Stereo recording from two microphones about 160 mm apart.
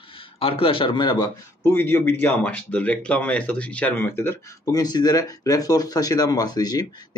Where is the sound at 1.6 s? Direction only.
15° left (ahead or behind).